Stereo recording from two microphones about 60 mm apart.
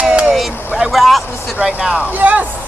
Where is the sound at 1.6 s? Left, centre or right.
Centre.